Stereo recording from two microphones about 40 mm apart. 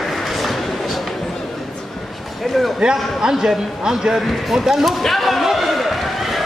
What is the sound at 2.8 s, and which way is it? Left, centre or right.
A man's voice, centre.